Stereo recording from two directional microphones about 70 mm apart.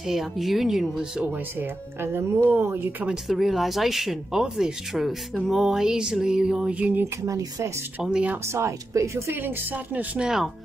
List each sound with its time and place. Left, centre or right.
0.0 s speech: centre
1.2 s speech: right
3.3 s speech: centre
5.5 s a sound: centre; by 7.1 s right
7.2 s speech: right
8.0 s a sound: centre
8.5 s speech: right
9.4 s speech: right
10.1 s a sound: centre